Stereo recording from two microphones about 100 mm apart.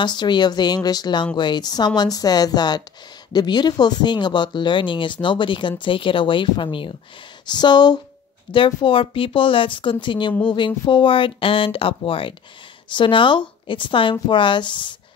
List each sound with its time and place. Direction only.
0.0 s speech: 50° left (ahead or behind)
8.5 s speech: 55° left (ahead or behind)